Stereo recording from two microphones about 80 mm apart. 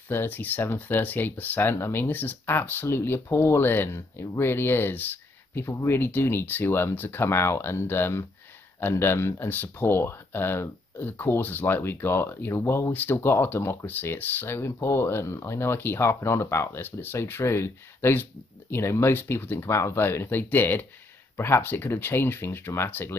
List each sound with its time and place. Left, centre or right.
0.1 s speech: left